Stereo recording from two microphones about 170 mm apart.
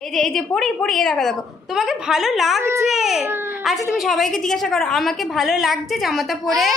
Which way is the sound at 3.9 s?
Centre (ahead or behind).